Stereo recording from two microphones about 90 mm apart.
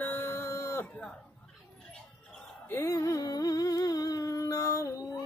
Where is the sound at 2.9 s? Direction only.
40° left (ahead or behind).